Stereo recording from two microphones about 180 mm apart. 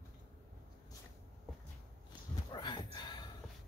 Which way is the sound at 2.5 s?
25° left (ahead or behind).